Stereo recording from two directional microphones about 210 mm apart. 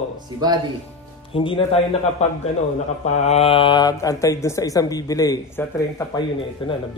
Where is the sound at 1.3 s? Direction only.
25° left (ahead or behind).